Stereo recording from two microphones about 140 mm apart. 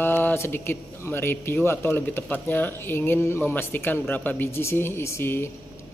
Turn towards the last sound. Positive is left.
turn(degrees=15)  # may be behind; listen again after turning